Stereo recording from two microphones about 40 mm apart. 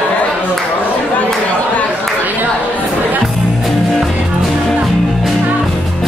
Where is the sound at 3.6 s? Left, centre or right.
Centre.